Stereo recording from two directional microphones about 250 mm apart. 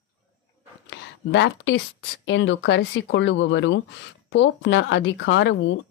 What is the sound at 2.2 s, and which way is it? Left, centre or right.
Speech, left.